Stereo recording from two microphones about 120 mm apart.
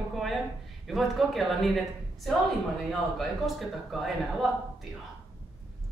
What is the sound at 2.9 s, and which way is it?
A man's voice, centre (ahead or behind).